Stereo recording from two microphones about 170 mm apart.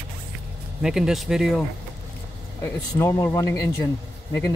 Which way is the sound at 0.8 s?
5° right (ahead or behind).